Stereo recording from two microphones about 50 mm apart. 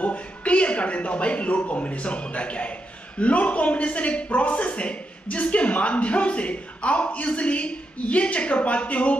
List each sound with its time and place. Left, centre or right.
0.0 s a woman's voice: left